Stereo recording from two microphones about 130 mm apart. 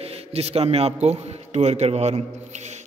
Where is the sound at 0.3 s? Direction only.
50° right (ahead or behind).